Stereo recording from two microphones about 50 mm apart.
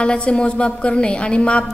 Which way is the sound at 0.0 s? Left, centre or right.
Left.